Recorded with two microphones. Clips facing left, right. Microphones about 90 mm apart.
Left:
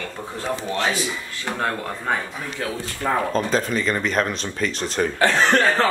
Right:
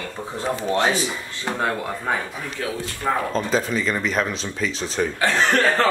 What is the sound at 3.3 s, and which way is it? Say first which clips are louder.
Speech: left 1 dB; centre (ahead or behind).